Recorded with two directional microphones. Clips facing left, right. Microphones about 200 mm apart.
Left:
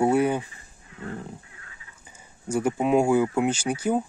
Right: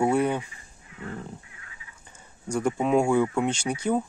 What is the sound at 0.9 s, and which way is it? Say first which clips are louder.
Dog: left 1 dB; 35° left (ahead or behind).